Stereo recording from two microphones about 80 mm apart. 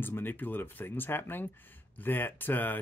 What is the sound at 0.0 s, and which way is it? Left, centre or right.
Speech, left.